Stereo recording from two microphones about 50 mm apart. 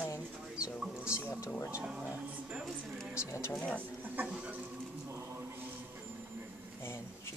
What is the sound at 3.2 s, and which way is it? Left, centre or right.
Speech, left.